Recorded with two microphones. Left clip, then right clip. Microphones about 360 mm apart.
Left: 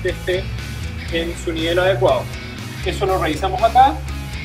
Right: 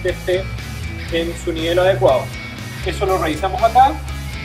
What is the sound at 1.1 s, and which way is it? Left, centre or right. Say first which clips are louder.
Speech: right 1 dB; centre.